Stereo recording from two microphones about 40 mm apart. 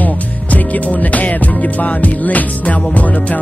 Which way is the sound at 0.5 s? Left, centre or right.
Left.